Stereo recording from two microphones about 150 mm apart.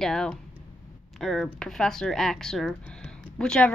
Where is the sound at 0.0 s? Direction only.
5° left (ahead or behind).